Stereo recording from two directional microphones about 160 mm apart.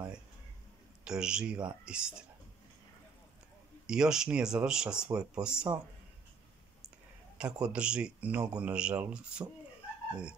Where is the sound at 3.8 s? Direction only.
5° right (ahead or behind).